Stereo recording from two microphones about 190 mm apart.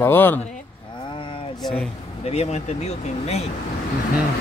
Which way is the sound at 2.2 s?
35° left (ahead or behind).